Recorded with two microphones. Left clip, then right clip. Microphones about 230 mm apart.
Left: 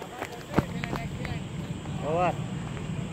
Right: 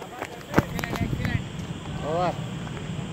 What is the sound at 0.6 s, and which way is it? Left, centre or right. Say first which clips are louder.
Run: right 5 dB; right.